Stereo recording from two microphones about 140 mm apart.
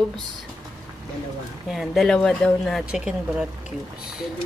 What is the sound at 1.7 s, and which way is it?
Speech, centre (ahead or behind).